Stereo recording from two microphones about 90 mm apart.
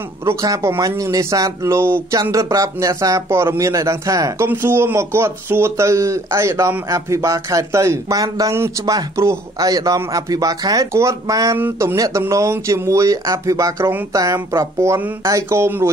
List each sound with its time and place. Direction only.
0.4 s speech: 35° right (ahead or behind)
2.3 s speech: 40° right (ahead or behind)
4.5 s speech: 25° right (ahead or behind); by 8.5 s 40° right (ahead or behind)
8.5 s speech: 30° right (ahead or behind)
11.5 s speech: 30° right (ahead or behind)